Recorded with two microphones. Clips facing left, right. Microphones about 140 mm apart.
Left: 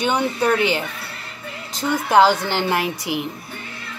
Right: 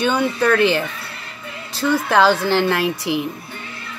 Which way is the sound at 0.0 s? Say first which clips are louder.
Right 2 dB; 15° left (ahead or behind).